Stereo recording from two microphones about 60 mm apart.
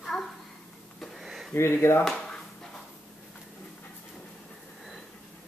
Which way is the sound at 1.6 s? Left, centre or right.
Left.